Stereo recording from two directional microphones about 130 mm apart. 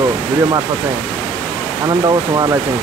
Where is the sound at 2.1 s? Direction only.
30° right (ahead or behind).